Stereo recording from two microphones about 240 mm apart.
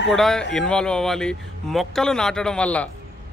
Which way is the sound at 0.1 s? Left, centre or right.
Centre.